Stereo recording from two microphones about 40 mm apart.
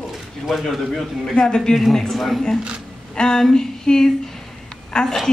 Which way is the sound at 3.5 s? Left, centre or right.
Centre.